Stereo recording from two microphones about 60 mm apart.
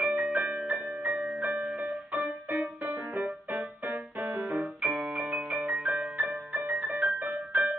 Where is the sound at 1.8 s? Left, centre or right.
Right.